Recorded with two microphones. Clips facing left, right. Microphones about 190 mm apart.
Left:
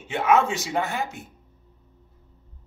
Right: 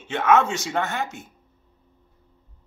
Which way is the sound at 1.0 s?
35° left (ahead or behind).